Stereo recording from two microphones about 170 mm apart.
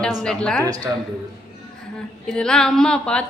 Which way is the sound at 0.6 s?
20° right (ahead or behind).